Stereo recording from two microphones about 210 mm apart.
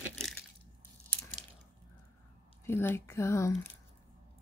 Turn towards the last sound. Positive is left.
turn(degrees=15)  # may be behind; listen again after turning